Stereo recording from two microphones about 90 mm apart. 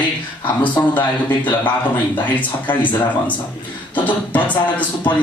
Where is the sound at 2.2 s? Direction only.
20° left (ahead or behind).